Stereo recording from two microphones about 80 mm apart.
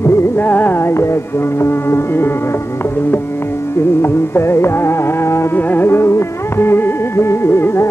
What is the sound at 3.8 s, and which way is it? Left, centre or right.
Music, left.